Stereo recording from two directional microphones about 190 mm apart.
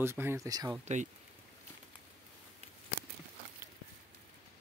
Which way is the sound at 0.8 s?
40° right (ahead or behind).